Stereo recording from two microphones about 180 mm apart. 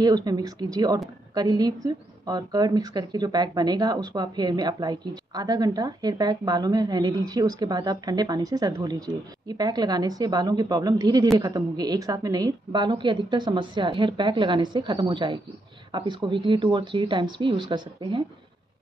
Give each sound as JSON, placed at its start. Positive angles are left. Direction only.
{"t": 0.0, "sound": "a woman's voice", "side_deg": -20}